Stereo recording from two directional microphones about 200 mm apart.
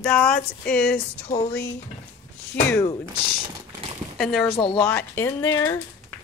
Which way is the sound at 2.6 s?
10° left (ahead or behind).